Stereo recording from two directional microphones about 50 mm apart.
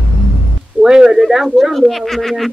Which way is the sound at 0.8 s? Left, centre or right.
Centre.